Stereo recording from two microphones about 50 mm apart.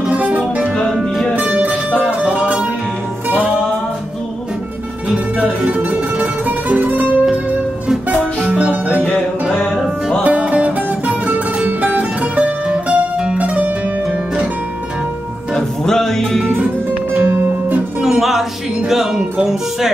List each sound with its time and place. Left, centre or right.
0.1 s music: right
5.1 s music: right
10.2 s music: right
15.5 s music: centre
16.4 s music: right
18.0 s music: centre